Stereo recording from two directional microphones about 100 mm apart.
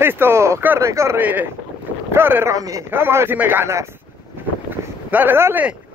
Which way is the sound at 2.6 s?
35° right (ahead or behind).